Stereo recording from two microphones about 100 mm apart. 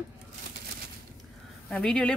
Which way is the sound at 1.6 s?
5° left (ahead or behind).